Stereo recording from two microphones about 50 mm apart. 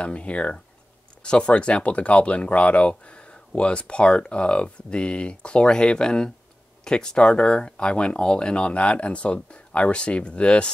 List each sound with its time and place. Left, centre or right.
0.0 s speech: left